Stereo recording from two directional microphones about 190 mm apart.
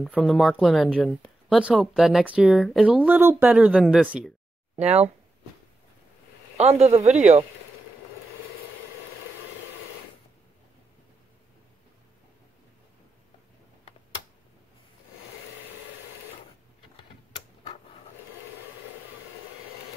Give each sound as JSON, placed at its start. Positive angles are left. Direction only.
{"t": 0.0, "sound": "speech", "side_deg": 0}
{"t": 4.7, "sound": "a man's voice", "side_deg": -35}
{"t": 6.5, "sound": "a man's voice", "side_deg": -35}